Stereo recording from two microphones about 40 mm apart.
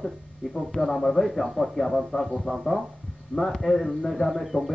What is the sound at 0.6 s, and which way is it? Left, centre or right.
Speech, centre.